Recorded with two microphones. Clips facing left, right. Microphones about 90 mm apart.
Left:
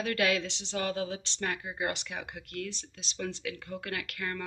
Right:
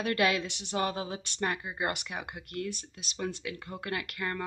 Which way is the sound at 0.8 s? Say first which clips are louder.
Right 1 dB; 35° right (ahead or behind).